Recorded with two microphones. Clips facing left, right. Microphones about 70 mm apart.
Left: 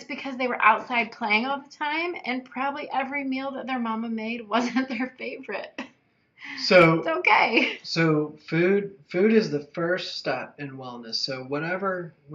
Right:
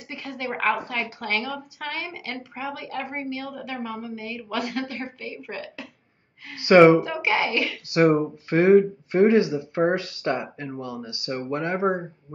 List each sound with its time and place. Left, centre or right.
0.1 s speech: centre
6.6 s speech: right
7.0 s a child's voice: centre
7.9 s speech: centre